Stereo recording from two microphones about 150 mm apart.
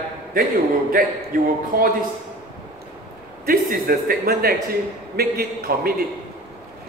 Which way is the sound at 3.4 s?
75° right (ahead or behind).